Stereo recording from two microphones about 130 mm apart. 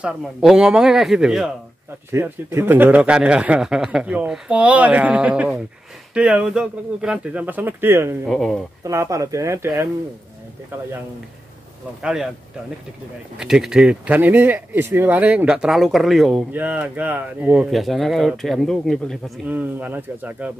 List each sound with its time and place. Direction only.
0.0 s speech: 5° right (ahead or behind)
2.1 s speech: 20° right (ahead or behind)
8.3 s speech: centre (ahead or behind)
8.8 s speech: 25° right (ahead or behind)
12.0 s speech: 5° right (ahead or behind)
13.4 s speech: 5° right (ahead or behind)
19.4 s speech: 15° right (ahead or behind)